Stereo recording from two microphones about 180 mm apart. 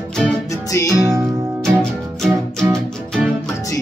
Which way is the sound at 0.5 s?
15° left (ahead or behind).